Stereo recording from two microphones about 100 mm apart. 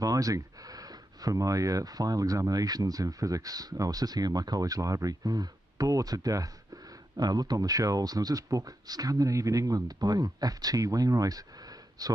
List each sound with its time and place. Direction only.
0.0 s speech: 35° right (ahead or behind)